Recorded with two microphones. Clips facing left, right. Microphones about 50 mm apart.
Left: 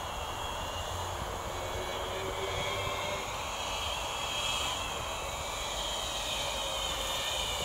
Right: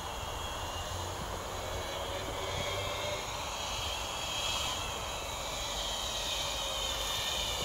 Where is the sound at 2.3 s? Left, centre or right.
Left.